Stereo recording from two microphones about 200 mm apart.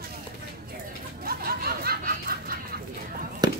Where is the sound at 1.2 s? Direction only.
50° right (ahead or behind).